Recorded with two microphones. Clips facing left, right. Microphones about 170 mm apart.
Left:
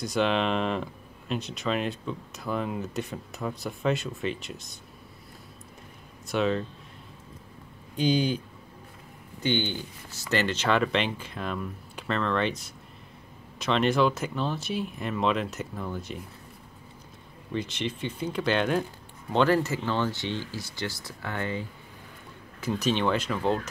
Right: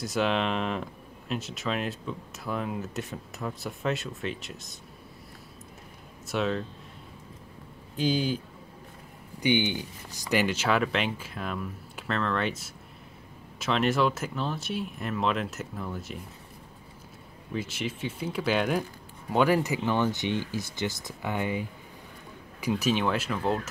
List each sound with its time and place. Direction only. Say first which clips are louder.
0.0 s speech: left 1 dB; centre (ahead or behind)
6.2 s speech: left 2 dB; centre (ahead or behind)
7.9 s speech: left 2 dB; centre (ahead or behind)
9.4 s speech: right 2 dB; 15° right (ahead or behind)
17.5 s speech: left 2 dB; 5° right (ahead or behind)